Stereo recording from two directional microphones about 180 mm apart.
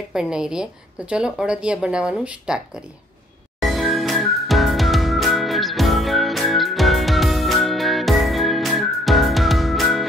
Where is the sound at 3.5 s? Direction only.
Centre (ahead or behind).